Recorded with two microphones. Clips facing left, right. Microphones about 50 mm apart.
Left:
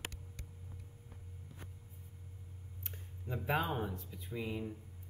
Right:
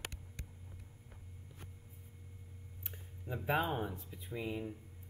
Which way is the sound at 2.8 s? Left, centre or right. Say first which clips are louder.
Even; centre.